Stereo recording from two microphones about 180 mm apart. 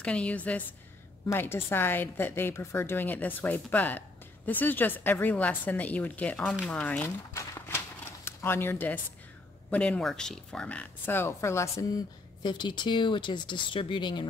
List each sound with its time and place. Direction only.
0.0 s a woman's voice: 5° left (ahead or behind); by 14.2 s 25° left (ahead or behind)